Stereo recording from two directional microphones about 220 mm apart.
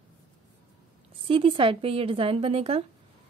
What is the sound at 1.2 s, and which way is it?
A woman's voice, 25° right (ahead or behind).